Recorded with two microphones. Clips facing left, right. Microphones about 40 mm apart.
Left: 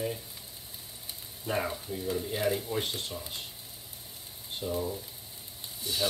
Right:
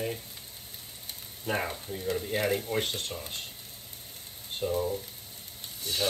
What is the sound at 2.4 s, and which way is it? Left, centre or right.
Speech, right.